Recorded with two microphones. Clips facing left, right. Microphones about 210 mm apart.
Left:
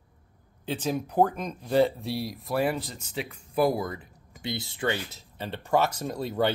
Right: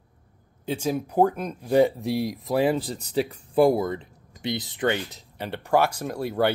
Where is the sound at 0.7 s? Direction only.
10° right (ahead or behind).